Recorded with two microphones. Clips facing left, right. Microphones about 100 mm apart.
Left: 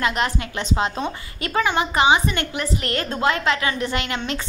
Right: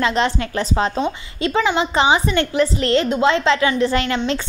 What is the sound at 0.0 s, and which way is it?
Speech, 30° right (ahead or behind).